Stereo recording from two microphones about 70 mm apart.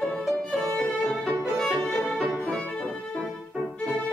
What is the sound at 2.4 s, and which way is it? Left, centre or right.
Music, centre.